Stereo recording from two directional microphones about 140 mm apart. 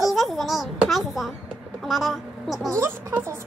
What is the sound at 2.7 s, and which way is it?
Speech, 20° right (ahead or behind).